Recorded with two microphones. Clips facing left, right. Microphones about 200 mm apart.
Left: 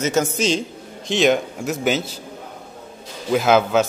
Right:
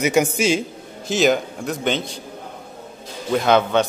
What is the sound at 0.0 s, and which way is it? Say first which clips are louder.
A man's voice: right 2 dB; 15° right (ahead or behind).